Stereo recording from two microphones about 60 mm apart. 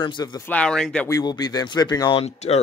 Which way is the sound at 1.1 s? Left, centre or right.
Left.